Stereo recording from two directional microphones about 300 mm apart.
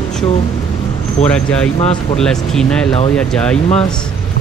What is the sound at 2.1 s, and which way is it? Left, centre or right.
Speech, centre.